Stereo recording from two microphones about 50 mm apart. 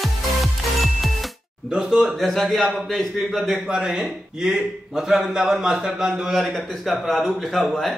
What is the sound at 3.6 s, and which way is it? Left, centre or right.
A man's voice, centre.